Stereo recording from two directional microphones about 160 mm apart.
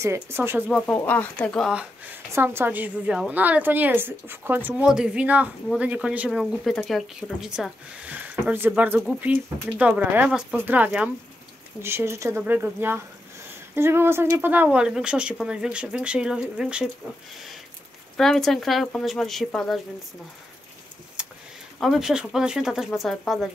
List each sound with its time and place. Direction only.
0.0 s speech: 15° right (ahead or behind)
0.7 s speech: 5° left (ahead or behind)
1.7 s speech: 10° right (ahead or behind)
18.1 s speech: centre (ahead or behind)
21.2 s a sound: 5° right (ahead or behind)
21.7 s speech: centre (ahead or behind)